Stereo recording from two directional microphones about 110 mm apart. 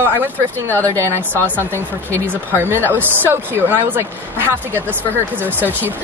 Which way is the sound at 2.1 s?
20° right (ahead or behind).